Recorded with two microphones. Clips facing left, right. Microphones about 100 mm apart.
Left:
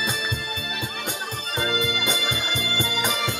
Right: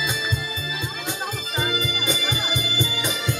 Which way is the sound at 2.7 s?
50° left (ahead or behind).